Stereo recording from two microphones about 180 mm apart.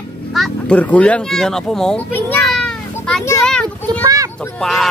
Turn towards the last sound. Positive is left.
turn(degrees=0)  # may be behind; listen again after turning